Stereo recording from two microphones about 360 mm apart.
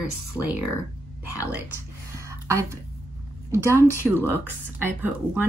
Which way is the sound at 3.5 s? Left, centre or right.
Centre.